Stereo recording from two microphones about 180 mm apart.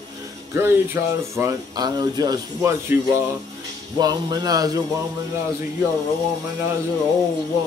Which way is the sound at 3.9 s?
20° right (ahead or behind).